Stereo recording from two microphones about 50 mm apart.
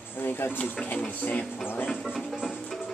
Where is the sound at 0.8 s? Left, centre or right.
Left.